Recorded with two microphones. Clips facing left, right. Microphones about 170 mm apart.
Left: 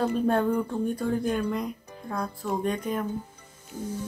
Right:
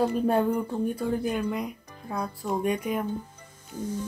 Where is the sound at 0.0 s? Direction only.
10° right (ahead or behind).